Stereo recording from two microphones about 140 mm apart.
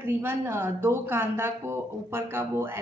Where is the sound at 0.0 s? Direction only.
15° right (ahead or behind).